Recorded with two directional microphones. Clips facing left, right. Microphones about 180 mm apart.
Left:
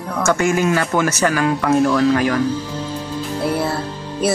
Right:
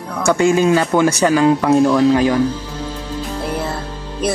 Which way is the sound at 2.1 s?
25° right (ahead or behind).